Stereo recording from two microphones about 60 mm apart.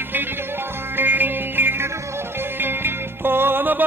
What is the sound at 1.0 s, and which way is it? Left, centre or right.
Music, right.